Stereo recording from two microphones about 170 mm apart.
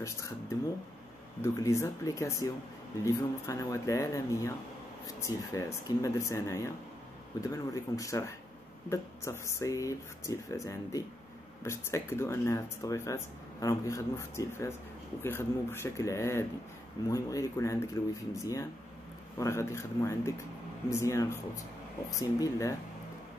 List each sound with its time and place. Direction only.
0.0 s speech: 15° left (ahead or behind)
1.4 s speech: 15° left (ahead or behind)